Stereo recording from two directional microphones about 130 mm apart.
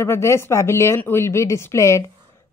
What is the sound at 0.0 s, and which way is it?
Speech, 20° left (ahead or behind).